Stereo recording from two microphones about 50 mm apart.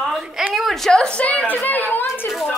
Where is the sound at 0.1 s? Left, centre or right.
Centre.